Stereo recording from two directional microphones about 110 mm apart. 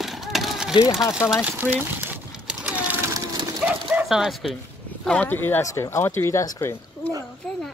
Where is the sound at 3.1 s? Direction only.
30° right (ahead or behind).